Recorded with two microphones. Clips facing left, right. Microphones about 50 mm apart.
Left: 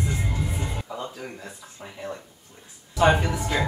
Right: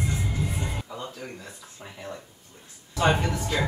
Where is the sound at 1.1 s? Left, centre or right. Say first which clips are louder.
Left 2 dB; centre.